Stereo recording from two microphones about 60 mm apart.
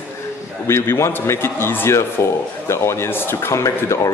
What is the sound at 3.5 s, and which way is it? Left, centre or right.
Speech, left.